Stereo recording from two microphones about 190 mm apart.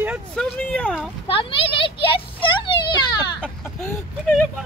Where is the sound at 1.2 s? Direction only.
30° left (ahead or behind).